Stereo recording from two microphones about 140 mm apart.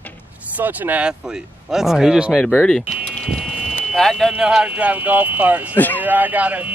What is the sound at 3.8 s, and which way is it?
Speech, centre (ahead or behind).